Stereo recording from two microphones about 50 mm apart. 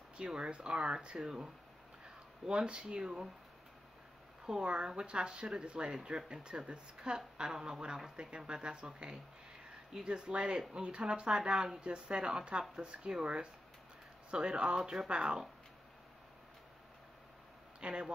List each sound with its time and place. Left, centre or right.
0.3 s speech: centre
4.5 s speech: centre
17.7 s speech: centre